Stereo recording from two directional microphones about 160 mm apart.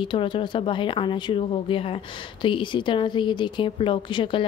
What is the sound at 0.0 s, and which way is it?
A woman's voice, 30° left (ahead or behind).